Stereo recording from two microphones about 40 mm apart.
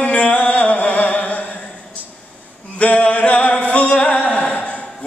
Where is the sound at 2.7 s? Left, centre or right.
Left.